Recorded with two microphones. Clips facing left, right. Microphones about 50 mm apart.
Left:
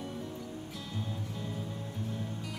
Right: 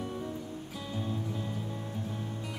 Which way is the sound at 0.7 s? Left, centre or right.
Centre.